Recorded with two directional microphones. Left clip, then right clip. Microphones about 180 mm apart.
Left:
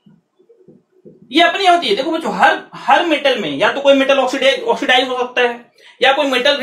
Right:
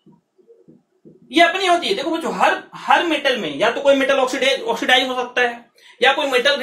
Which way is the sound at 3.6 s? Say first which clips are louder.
Left 3 dB; 20° left (ahead or behind).